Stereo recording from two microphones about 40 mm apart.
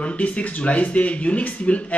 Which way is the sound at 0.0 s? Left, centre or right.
Left.